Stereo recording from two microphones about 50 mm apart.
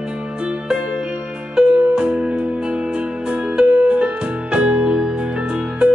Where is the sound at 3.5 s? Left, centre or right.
Right.